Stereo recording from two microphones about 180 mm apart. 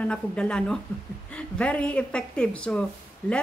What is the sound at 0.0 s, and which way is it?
A woman's voice, 5° left (ahead or behind).